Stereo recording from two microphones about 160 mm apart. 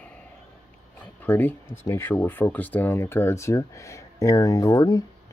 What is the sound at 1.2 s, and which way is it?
Speech, 10° left (ahead or behind).